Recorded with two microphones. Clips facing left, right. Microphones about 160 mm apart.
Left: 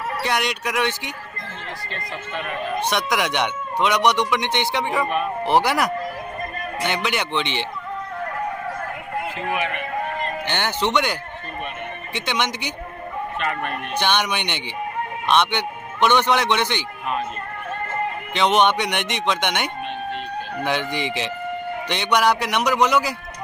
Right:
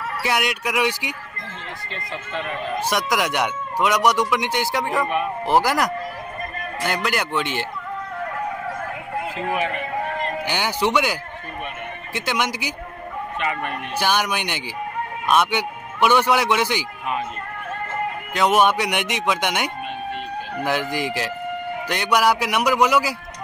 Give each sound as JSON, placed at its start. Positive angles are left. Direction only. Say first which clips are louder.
{"t": 0.2, "sound": "speech", "louder": "right 2 dB", "side_deg": -5}
{"t": 1.9, "sound": "speech", "louder": "right 2 dB", "side_deg": -25}
{"t": 2.9, "sound": "speech", "louder": "right 2 dB", "side_deg": -5}
{"t": 5.0, "sound": "speech", "louder": "even", "side_deg": -15}
{"t": 5.4, "sound": "speech", "louder": "even", "side_deg": 0}
{"t": 9.4, "sound": "speech", "louder": "right 2 dB", "side_deg": -35}
{"t": 10.4, "sound": "a man's voice", "louder": "right 1 dB", "side_deg": -10}
{"t": 18.3, "sound": "speech", "louder": "even", "side_deg": -5}